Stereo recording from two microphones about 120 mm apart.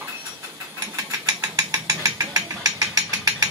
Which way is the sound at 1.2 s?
25° right (ahead or behind).